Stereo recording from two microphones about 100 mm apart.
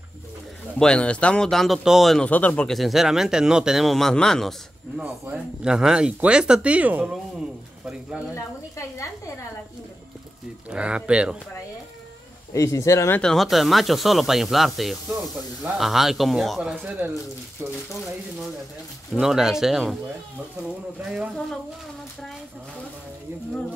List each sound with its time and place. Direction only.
0.7 s speech: 10° left (ahead or behind)
2.2 s speech: 15° left (ahead or behind)
2.7 s speech: centre (ahead or behind)
5.3 s speech: 10° right (ahead or behind)
8.7 s a woman's voice: 30° left (ahead or behind)
10.7 s speech: 10° right (ahead or behind)
12.5 s speech: 30° left (ahead or behind)
13.2 s speech: 5° left (ahead or behind)
19.1 s speech: 5° right (ahead or behind)
21.0 s speech: 10° right (ahead or behind)